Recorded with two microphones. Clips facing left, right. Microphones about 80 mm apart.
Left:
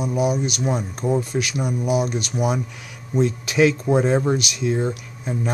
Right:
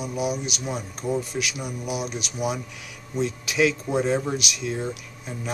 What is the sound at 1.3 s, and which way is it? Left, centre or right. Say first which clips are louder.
Speech: left 5 dB; left.